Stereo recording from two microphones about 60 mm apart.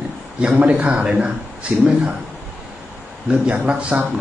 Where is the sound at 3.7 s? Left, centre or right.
Centre.